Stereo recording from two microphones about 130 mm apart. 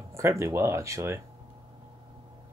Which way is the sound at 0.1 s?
20° right (ahead or behind).